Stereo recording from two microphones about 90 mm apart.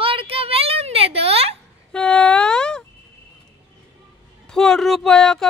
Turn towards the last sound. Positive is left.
turn(degrees=5)  # may be behind; listen again after turning